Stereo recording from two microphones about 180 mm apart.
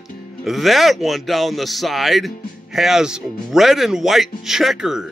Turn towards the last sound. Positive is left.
turn(degrees=-5)  # may be behind; listen again after turning